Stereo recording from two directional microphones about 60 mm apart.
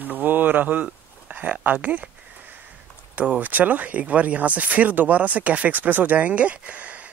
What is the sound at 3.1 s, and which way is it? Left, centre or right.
Speech, right.